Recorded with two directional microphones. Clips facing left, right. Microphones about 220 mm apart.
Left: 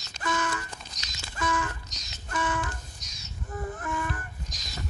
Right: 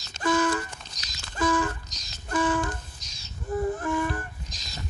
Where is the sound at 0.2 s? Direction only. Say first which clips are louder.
Right 7 dB; 30° right (ahead or behind).